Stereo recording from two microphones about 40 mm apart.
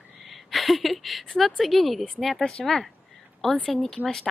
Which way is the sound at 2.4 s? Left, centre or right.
Left.